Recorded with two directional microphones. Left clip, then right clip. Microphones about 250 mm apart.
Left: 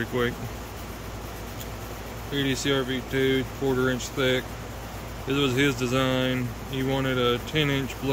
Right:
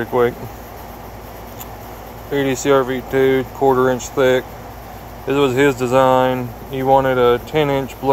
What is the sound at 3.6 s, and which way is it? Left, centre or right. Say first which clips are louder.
Speech: right 12 dB; right.